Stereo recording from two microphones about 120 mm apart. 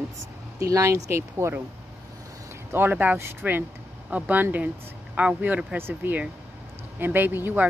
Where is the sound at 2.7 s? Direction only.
15° right (ahead or behind).